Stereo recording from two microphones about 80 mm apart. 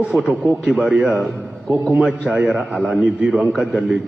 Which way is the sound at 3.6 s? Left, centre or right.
Centre.